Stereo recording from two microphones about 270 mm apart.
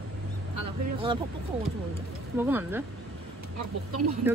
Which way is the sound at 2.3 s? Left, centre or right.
Centre.